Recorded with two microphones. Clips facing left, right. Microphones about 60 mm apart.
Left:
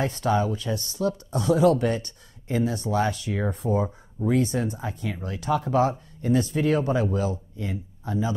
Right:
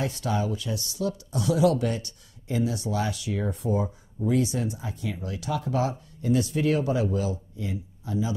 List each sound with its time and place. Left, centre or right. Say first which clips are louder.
0.0 s speech: left 4 dB; left